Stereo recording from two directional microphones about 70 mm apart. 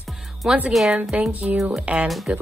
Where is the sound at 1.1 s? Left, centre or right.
Right.